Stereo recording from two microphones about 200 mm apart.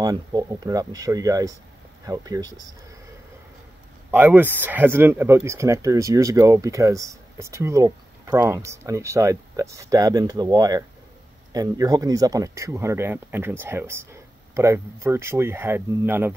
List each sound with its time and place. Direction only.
0.0 s speech: 20° right (ahead or behind)
4.1 s speech: 10° right (ahead or behind)